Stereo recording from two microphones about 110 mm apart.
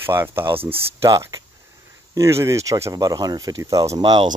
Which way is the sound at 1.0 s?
30° right (ahead or behind).